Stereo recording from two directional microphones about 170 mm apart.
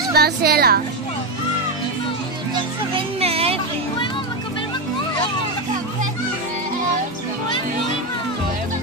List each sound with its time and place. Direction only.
0.1 s speech: 65° right (ahead or behind)
2.9 s music: 35° right (ahead or behind)